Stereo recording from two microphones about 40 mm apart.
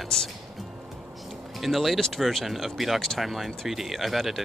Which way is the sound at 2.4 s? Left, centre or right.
Centre.